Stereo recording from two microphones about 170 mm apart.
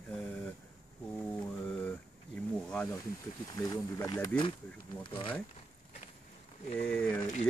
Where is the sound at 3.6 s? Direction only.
20° left (ahead or behind).